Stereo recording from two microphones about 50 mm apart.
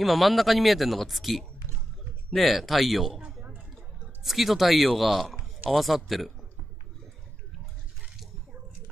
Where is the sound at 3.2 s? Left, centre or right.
Right.